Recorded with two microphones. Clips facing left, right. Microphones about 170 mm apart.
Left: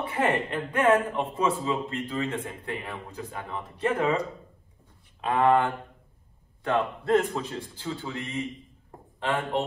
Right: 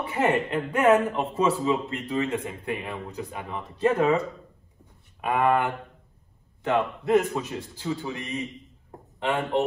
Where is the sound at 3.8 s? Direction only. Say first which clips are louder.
Right 4 dB; 25° right (ahead or behind).